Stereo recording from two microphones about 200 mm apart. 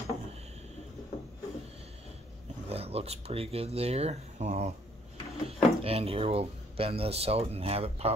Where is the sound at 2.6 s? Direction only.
30° right (ahead or behind).